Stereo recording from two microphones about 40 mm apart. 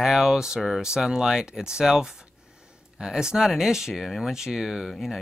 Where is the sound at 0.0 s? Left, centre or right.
Centre.